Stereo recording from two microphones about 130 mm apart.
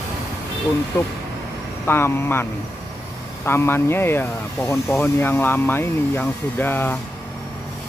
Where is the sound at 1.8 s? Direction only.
20° left (ahead or behind).